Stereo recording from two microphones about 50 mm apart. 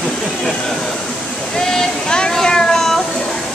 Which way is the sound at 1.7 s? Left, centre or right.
Centre.